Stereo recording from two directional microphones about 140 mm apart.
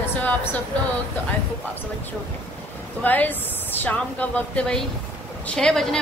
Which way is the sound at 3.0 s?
10° left (ahead or behind).